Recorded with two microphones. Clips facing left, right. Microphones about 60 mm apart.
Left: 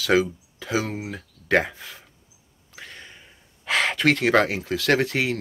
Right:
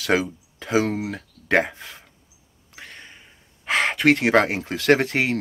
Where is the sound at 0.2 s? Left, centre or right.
Right.